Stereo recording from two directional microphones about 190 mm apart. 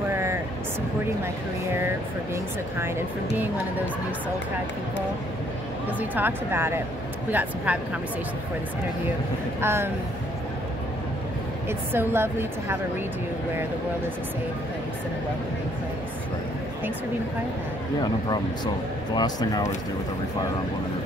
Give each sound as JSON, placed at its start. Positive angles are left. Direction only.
{"t": 0.1, "sound": "vehicle", "side_deg": -15}
{"t": 5.9, "sound": "a woman's voice", "side_deg": -10}
{"t": 9.6, "sound": "a woman's voice", "side_deg": -15}
{"t": 11.9, "sound": "a woman's voice", "side_deg": -10}
{"t": 19.1, "sound": "speech", "side_deg": 20}